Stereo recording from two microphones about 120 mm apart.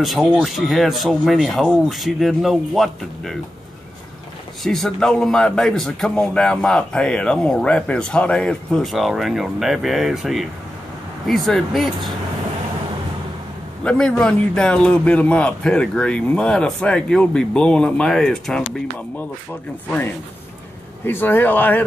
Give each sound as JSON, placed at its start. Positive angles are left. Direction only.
{"t": 0.0, "sound": "a man's voice", "side_deg": 0}
{"t": 4.6, "sound": "a man's voice", "side_deg": 5}
{"t": 13.8, "sound": "a man's voice", "side_deg": 5}
{"t": 21.0, "sound": "a man's voice", "side_deg": 15}